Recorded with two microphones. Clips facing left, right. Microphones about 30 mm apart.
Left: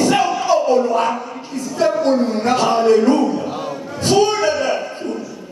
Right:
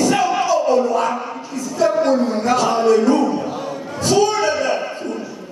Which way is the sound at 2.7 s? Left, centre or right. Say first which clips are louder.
Left 2 dB; left.